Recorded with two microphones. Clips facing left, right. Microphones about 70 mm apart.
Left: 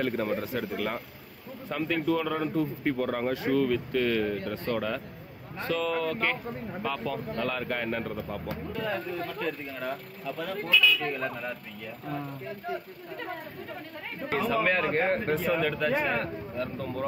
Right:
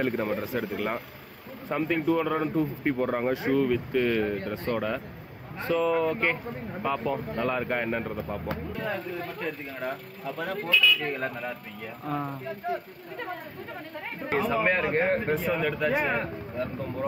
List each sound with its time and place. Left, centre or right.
0.0 s a man's voice: centre
8.2 s speech: right
8.9 s speech: centre
10.2 s speech: right
10.7 s speech: centre
11.1 s a man's voice: right
12.1 s speech: right
14.3 s speech: centre